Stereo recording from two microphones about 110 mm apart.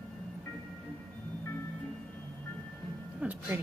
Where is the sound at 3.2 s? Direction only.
15° right (ahead or behind).